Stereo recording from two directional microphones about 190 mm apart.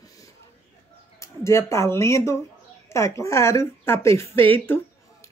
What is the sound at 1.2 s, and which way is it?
Speech, 15° left (ahead or behind).